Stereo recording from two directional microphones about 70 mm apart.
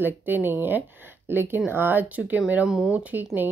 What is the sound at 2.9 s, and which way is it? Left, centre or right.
Speech, right.